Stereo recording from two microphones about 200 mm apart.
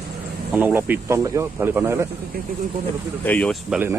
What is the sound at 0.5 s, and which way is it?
Speech, 10° right (ahead or behind).